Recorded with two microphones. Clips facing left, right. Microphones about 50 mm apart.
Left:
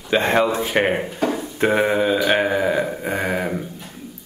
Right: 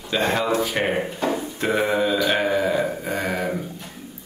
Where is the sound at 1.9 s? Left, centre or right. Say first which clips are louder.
Left 3 dB; left.